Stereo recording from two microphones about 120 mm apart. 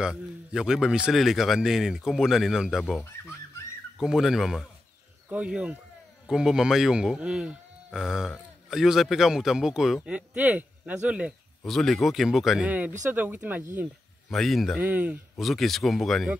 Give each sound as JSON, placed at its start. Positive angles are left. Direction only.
{"t": 0.0, "sound": "speech", "side_deg": -5}
{"t": 3.0, "sound": "speech", "side_deg": 20}
{"t": 4.0, "sound": "speech", "side_deg": -5}
{"t": 11.6, "sound": "speech", "side_deg": 0}
{"t": 14.3, "sound": "speech", "side_deg": 0}
{"t": 14.8, "sound": "speech", "side_deg": -15}
{"t": 15.3, "sound": "speech", "side_deg": 0}